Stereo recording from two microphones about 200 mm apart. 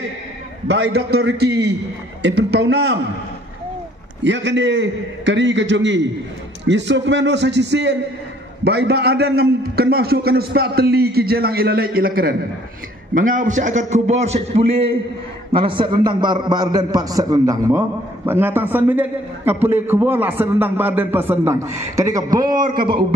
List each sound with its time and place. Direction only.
0.7 s a man's voice: 55° right (ahead or behind)
4.2 s a man's voice: 65° right (ahead or behind); by 22.9 s 25° right (ahead or behind)